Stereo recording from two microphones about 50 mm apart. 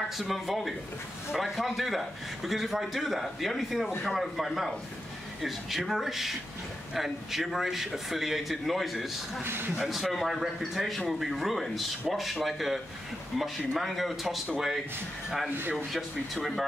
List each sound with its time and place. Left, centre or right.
0.2 s a man's voice: centre
9.4 s speech: right
9.8 s a man's voice: centre